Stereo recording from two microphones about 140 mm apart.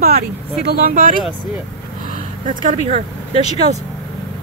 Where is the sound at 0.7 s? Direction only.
85° right.